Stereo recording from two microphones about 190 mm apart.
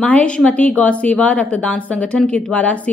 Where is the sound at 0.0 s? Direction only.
5° left (ahead or behind).